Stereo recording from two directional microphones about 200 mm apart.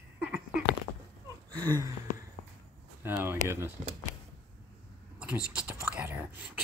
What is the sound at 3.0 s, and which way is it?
Speech, 10° right (ahead or behind).